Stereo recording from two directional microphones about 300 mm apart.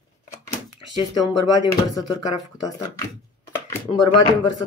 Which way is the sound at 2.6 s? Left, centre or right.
Centre.